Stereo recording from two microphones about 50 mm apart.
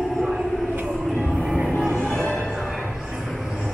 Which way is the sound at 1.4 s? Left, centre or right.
Centre.